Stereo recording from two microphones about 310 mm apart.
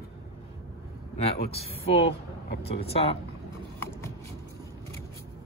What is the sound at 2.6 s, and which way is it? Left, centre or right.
Speech, centre.